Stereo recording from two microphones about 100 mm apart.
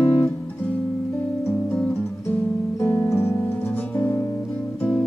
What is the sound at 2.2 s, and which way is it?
Music, 20° left (ahead or behind).